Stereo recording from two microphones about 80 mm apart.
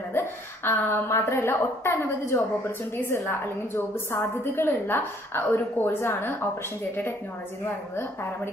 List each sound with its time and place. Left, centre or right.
0.7 s a woman's voice: left
7.6 s a woman's voice: left